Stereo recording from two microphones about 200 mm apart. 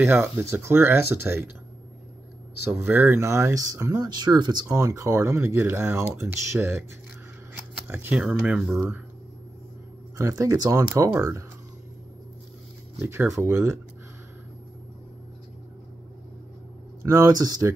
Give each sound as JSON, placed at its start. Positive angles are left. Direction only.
{"t": 0.0, "sound": "speech", "side_deg": -10}
{"t": 2.7, "sound": "speech", "side_deg": -10}
{"t": 7.9, "sound": "speech", "side_deg": -10}
{"t": 10.1, "sound": "speech", "side_deg": -15}
{"t": 13.0, "sound": "speech", "side_deg": -15}
{"t": 17.0, "sound": "speech", "side_deg": -15}